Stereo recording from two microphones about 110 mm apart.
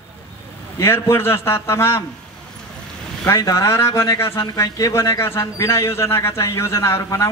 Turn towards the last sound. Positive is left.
turn(degrees=30)  # may be behind; listen again after turning